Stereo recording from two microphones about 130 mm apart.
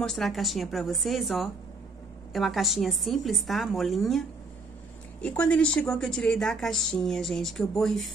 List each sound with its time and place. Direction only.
0.0 s a woman's voice: centre (ahead or behind)
5.2 s a woman's voice: 10° left (ahead or behind)